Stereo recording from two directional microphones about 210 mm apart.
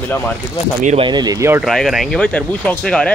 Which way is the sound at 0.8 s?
25° right (ahead or behind).